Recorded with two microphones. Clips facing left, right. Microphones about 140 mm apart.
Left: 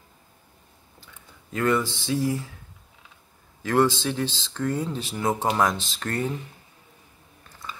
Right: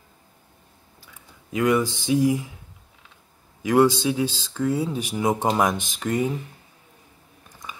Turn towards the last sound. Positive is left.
turn(degrees=-15)  # may be behind; listen again after turning